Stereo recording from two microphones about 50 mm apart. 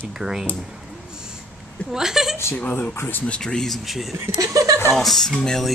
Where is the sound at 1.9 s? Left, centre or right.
Centre.